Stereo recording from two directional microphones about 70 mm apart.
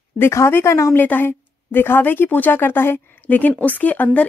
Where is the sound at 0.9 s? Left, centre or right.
Left.